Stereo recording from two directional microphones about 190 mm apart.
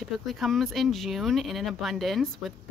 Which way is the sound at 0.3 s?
Centre (ahead or behind).